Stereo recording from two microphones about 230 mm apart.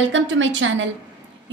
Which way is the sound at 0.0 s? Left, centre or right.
Right.